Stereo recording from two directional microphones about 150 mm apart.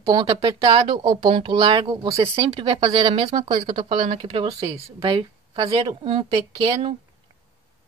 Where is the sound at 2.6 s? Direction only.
35° right (ahead or behind).